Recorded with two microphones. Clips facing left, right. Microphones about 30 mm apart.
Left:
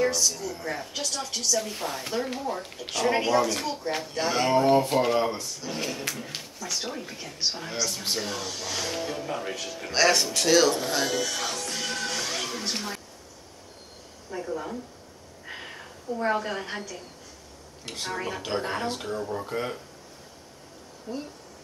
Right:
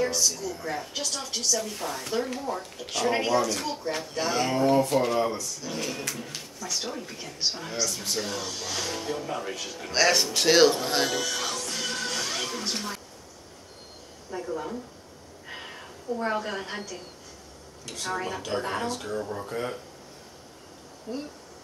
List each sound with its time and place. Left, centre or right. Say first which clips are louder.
0.0 s a woman's voice: left 1 dB; centre
0.4 s speech: even; centre
1.6 s speech: left 1 dB; centre
10.3 s speech: right 1 dB; right
11.1 s speech: left 1 dB; centre
14.5 s speech: even; centre
15.4 s a sound: left 1 dB; centre
16.2 s speech: left 3 dB; centre
17.8 s speech: even; left
18.1 s speech: even; centre
21.1 s speech: even; centre